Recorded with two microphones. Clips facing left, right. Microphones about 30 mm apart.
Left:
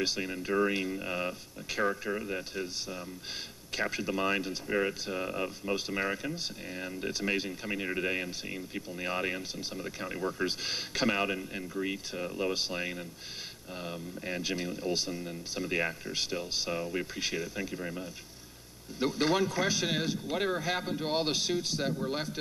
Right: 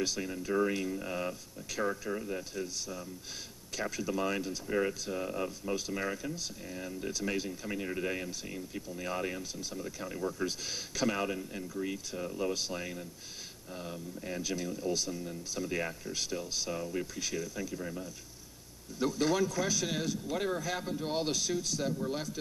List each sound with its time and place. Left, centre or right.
0.0 s speech: left